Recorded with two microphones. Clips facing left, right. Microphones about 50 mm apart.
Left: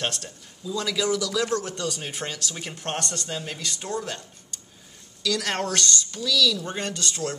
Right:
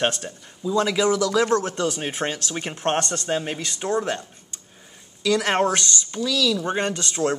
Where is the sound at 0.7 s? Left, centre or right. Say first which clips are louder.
Right 6 dB; right.